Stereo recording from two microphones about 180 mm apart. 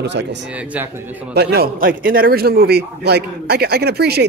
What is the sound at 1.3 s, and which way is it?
A man's voice, 60° right (ahead or behind).